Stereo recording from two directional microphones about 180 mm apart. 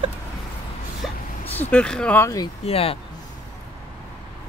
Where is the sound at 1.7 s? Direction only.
5° left (ahead or behind).